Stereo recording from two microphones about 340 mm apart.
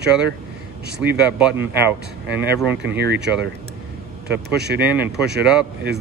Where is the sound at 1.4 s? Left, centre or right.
Centre.